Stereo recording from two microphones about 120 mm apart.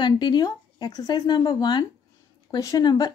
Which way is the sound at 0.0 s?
35° left (ahead or behind).